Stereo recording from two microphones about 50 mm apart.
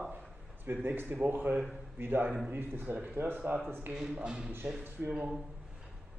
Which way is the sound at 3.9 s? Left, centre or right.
Centre.